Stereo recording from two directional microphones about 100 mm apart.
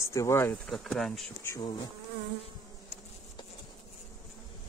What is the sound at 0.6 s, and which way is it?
Speech, centre (ahead or behind).